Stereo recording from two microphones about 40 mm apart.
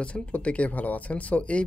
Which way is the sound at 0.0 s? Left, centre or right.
Left.